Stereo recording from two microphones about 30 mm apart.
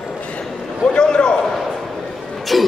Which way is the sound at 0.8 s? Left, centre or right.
Left.